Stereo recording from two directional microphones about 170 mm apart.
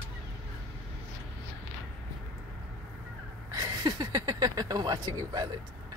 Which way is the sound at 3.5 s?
25° right (ahead or behind).